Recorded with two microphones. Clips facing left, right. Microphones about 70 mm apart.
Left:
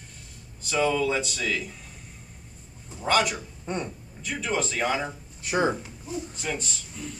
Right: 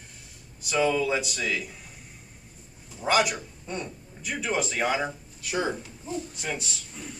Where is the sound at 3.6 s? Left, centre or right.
Left.